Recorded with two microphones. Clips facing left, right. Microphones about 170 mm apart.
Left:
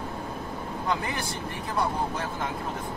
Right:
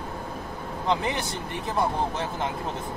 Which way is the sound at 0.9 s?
20° right (ahead or behind).